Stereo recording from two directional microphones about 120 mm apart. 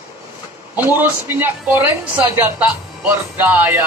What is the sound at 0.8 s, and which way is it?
Speech, 15° right (ahead or behind).